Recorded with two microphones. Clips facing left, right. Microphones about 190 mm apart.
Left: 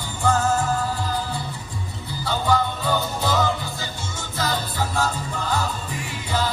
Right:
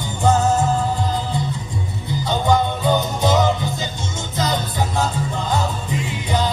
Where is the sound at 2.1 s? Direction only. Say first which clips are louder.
Right 4 dB; 20° right (ahead or behind).